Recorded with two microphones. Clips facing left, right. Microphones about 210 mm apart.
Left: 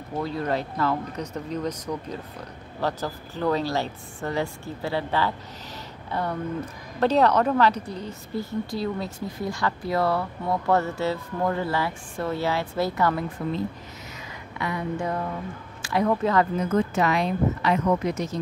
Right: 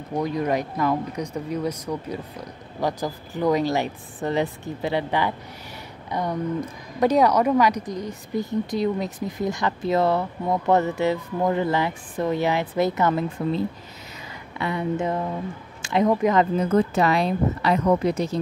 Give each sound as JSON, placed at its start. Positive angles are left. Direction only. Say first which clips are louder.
{"t": 0.1, "sound": "speech", "louder": "right 3 dB", "side_deg": -15}
{"t": 14.6, "sound": "speech", "louder": "right 3 dB", "side_deg": -25}
{"t": 15.8, "sound": "a sound", "louder": "right 3 dB", "side_deg": -20}
{"t": 16.1, "sound": "speech", "louder": "right 2 dB", "side_deg": -15}
{"t": 16.5, "sound": "speech", "louder": "right 3 dB", "side_deg": -35}